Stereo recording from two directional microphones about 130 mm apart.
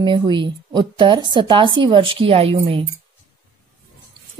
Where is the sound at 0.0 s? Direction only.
40° right (ahead or behind).